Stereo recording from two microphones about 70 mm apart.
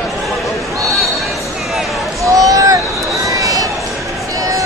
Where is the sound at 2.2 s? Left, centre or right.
Right.